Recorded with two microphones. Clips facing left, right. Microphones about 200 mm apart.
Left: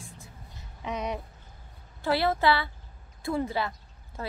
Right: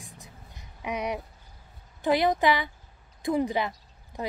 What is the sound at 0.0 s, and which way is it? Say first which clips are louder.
Vehicle: left 1 dB; 15° right (ahead or behind).